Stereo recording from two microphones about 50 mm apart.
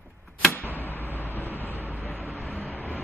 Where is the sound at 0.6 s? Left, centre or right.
Left.